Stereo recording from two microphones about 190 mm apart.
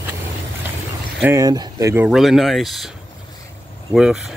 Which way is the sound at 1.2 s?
15° right (ahead or behind).